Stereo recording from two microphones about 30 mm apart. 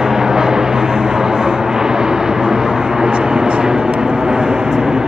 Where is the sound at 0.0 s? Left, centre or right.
Centre.